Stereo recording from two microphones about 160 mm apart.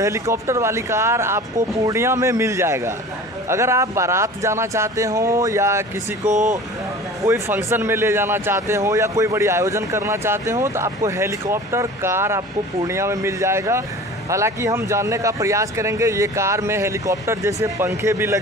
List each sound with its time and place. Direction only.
0.0 s speech: 20° right (ahead or behind)
6.2 s speech: 50° right (ahead or behind)
7.2 s speech: 15° right (ahead or behind)